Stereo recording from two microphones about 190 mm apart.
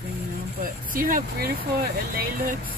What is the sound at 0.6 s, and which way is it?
Speech, 45° right (ahead or behind).